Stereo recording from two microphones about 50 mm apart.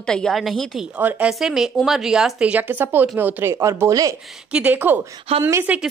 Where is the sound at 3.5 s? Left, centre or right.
Right.